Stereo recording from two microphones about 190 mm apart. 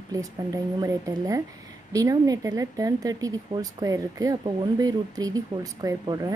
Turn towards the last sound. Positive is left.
turn(degrees=-20)  # may be behind; listen again after turning